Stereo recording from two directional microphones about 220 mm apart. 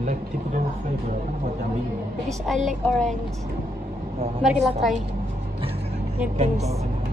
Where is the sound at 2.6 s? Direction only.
Centre (ahead or behind).